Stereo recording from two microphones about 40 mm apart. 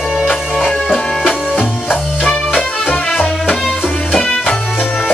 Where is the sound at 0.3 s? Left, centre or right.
Left.